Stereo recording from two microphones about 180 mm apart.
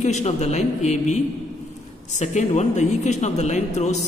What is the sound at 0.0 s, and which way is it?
Speech, 40° left (ahead or behind).